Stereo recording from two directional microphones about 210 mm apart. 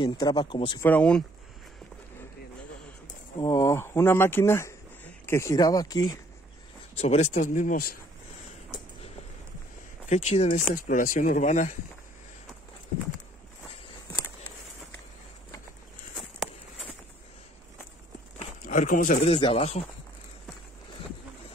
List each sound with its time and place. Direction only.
0.0 s speech: 20° left (ahead or behind)
0.8 s speech: 5° left (ahead or behind)
3.3 s speech: 15° left (ahead or behind)
7.0 s speech: 35° left (ahead or behind)
10.0 s speech: 30° left (ahead or behind)
16.2 s a sound: centre (ahead or behind)
18.4 s a sound: 40° left (ahead or behind)
19.2 s speech: 30° left (ahead or behind)